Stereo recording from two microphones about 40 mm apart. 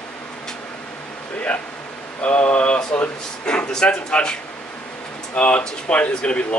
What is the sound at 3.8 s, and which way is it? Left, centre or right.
Speech, left.